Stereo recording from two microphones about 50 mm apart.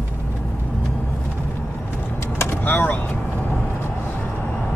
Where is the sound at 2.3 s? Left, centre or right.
Left.